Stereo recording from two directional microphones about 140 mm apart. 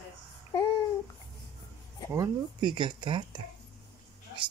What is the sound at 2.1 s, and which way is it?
Speech, 30° right (ahead or behind).